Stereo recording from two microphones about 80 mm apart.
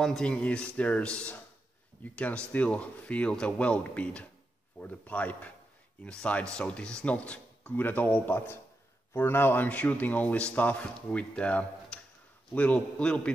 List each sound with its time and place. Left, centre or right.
0.0 s a man's voice: centre